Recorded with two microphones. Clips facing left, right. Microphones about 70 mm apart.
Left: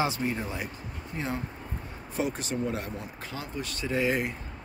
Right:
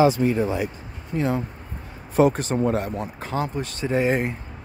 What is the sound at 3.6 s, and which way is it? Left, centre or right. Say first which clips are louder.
Speech: right 3 dB; right.